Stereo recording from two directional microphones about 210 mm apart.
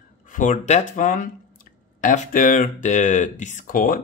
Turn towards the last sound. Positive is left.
turn(degrees=40)  # may be behind; listen again after turning